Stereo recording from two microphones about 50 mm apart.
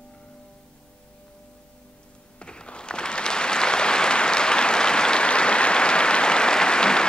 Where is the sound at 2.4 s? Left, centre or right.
Centre.